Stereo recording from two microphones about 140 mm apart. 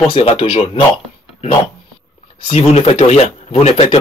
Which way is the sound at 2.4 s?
45° left (ahead or behind).